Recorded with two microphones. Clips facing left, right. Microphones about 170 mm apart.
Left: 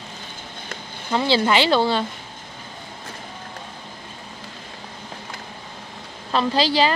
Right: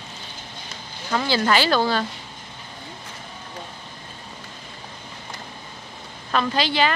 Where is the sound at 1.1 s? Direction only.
25° left (ahead or behind).